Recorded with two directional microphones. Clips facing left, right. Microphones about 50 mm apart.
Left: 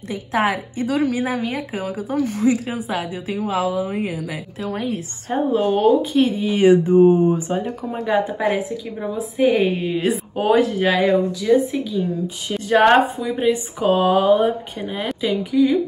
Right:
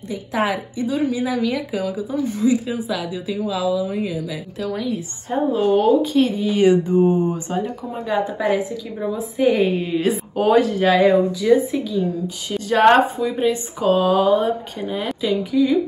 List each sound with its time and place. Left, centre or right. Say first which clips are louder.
0.1 s a woman's voice: left 1 dB; left
0.8 s speech: left 1 dB; left
1.1 s a woman's voice: right 1 dB; left
9.4 s a woman's voice: even; centre
11.1 s speech: right 2 dB; centre
12.4 s a woman's voice: left 2 dB; left
12.8 s a woman's voice: right 3 dB; centre
13.7 s a woman's voice: right 1 dB; left
15.2 s a woman's voice: left 1 dB; left